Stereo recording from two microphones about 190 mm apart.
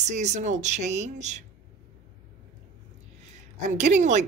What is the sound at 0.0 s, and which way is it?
Speech, 35° right (ahead or behind).